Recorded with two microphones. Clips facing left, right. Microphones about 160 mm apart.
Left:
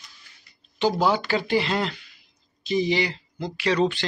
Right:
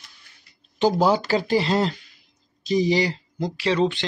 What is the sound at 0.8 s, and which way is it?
Speech, 40° right (ahead or behind).